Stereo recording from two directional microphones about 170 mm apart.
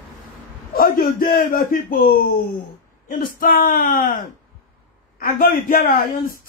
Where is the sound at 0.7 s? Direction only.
55° left (ahead or behind).